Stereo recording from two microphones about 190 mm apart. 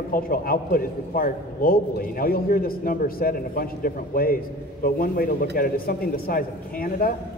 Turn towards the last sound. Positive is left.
turn(degrees=50)  # may be behind; listen again after turning